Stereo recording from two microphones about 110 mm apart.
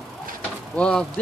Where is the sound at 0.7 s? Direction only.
10° left (ahead or behind).